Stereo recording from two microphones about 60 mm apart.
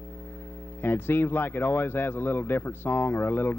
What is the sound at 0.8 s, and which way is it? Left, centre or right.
Speech, left.